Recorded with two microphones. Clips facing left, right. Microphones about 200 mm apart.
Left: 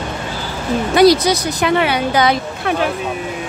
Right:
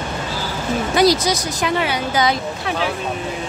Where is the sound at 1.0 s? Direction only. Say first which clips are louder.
Left 5 dB; 65° left (ahead or behind).